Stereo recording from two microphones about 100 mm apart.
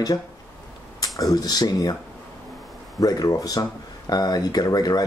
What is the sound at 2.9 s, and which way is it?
Speech, 35° left (ahead or behind).